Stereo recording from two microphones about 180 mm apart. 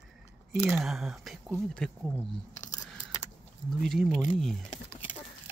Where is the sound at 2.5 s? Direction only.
45° left (ahead or behind).